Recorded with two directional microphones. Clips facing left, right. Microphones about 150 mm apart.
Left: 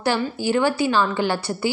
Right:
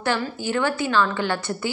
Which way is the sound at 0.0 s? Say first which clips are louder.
Left 3 dB; 15° left (ahead or behind).